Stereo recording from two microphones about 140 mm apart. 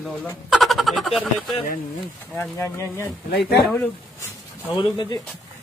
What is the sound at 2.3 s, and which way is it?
Speech, 15° left (ahead or behind).